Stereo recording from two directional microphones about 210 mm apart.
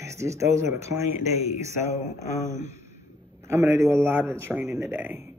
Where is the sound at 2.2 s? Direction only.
15° right (ahead or behind).